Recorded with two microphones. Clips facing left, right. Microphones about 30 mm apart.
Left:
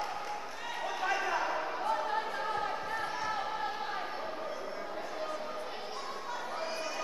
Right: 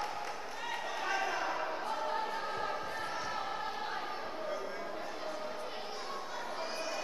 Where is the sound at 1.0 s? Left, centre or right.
Centre.